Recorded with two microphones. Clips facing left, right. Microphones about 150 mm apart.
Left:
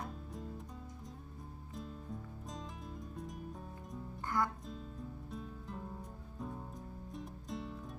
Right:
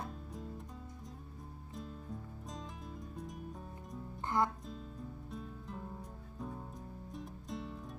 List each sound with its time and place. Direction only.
1.8 s music: centre (ahead or behind)
4.3 s speech: 25° right (ahead or behind)
5.3 s music: centre (ahead or behind)